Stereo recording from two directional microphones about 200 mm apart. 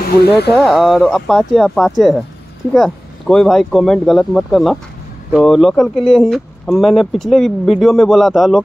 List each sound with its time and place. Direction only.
0.0 s speech: 50° left (ahead or behind)
0.5 s speech: centre (ahead or behind)